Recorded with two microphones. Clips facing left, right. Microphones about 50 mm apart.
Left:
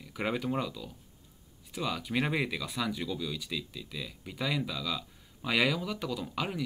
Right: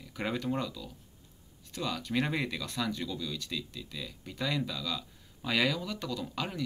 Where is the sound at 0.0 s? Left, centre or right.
Centre.